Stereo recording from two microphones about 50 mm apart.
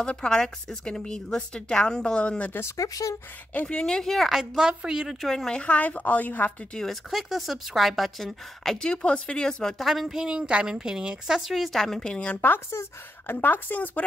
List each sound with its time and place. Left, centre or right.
0.0 s a woman's voice: centre
2.6 s speech: left
3.6 s a woman's voice: centre
4.3 s a woman's voice: centre
5.2 s speech: centre
5.5 s a woman's voice: left
6.9 s speech: centre
8.7 s speech: centre
9.8 s a woman's voice: centre
12.0 s a woman's voice: centre
12.4 s a woman's voice: left